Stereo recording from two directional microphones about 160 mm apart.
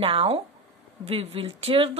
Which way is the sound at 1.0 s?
40° right (ahead or behind).